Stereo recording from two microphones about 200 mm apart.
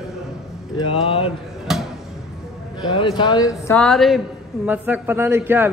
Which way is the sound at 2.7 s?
25° left (ahead or behind).